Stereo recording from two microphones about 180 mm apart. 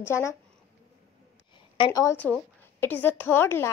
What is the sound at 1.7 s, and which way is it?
A woman's voice, 25° left (ahead or behind).